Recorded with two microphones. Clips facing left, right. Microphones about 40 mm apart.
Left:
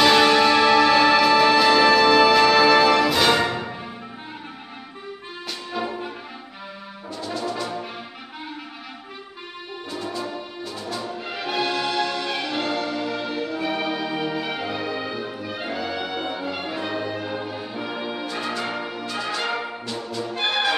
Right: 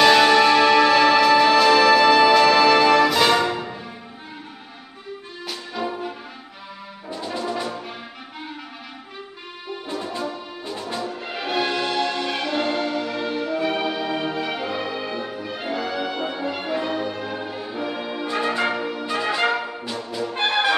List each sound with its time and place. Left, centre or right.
0.0 s music: centre
3.4 s music: left
5.8 s music: centre
7.1 s brass instrument: centre
10.6 s brass instrument: right
11.2 s music: centre
11.6 s music: right
12.3 s music: centre
13.6 s music: centre
18.2 s music: right
18.8 s music: centre
19.0 s music: right
19.9 s brass instrument: centre